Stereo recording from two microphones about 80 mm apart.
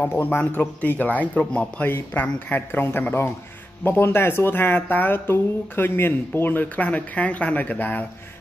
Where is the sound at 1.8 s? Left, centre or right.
Left.